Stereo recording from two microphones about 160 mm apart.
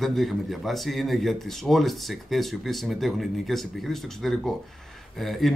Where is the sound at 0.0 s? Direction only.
Centre (ahead or behind).